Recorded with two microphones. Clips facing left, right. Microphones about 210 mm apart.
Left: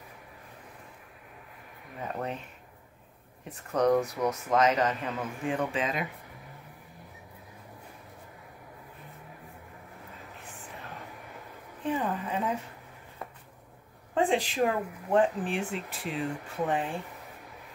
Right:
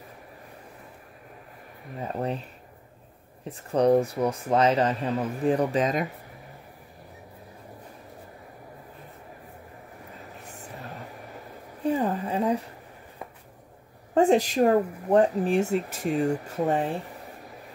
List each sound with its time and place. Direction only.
2.0 s speech: 35° right (ahead or behind)
3.4 s speech: 30° right (ahead or behind)
10.5 s vehicle: 40° right (ahead or behind)
11.8 s a sound: 35° right (ahead or behind)
14.1 s speech: 45° right (ahead or behind)